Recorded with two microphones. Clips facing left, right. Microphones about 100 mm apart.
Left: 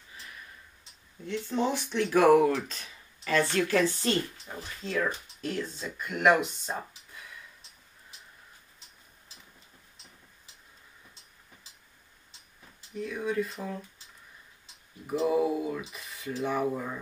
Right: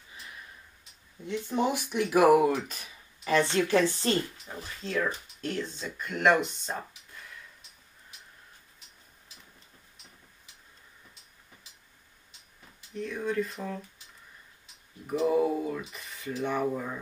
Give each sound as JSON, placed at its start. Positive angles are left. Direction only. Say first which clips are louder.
{"t": 1.2, "sound": "speech", "louder": "right 1 dB", "side_deg": -15}
{"t": 4.5, "sound": "speech", "louder": "even", "side_deg": 0}
{"t": 12.9, "sound": "speech", "louder": "even", "side_deg": 5}
{"t": 15.0, "sound": "speech", "louder": "right 1 dB", "side_deg": 5}